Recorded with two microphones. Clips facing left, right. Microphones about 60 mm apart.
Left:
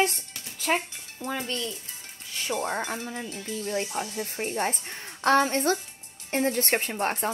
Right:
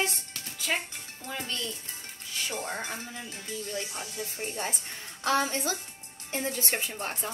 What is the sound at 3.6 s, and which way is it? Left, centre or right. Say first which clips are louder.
A woman's voice: left 8 dB; left.